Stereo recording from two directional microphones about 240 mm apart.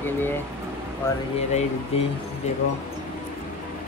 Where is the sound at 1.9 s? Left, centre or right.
Left.